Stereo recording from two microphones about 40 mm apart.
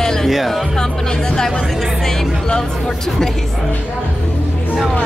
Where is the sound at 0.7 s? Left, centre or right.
Centre.